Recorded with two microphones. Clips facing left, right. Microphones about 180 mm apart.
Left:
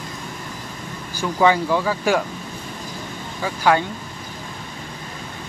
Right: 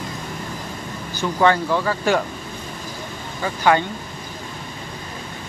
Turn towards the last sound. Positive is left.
turn(degrees=5)  # may be behind; listen again after turning